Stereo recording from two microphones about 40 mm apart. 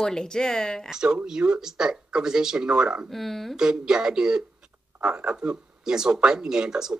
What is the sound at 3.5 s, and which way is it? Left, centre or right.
Speech, centre.